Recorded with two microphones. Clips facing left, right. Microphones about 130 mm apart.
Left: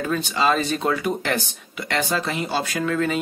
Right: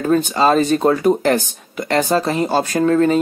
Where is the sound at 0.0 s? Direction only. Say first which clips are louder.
Right 7 dB; 45° right (ahead or behind).